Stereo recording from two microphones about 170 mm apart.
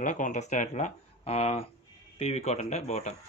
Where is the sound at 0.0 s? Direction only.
50° left (ahead or behind).